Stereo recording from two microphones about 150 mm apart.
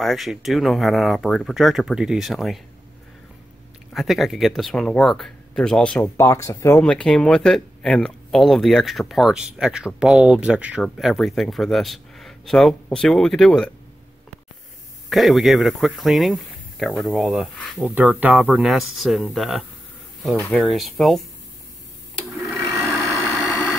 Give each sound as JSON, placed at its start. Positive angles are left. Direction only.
{"t": 0.0, "sound": "speech", "side_deg": 0}
{"t": 3.9, "sound": "speech", "side_deg": 0}
{"t": 6.2, "sound": "speech", "side_deg": 20}
{"t": 6.8, "sound": "speech", "side_deg": 5}
{"t": 15.0, "sound": "speech", "side_deg": 0}
{"t": 22.4, "sound": "sewing machine", "side_deg": 0}
{"t": 23.3, "sound": "vehicle", "side_deg": 0}